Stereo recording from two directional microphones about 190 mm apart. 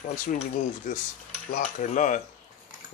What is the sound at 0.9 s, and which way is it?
Cutlery, 45° left (ahead or behind).